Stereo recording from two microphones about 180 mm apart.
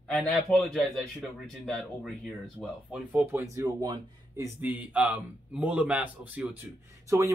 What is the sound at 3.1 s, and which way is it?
Speech, 10° right (ahead or behind).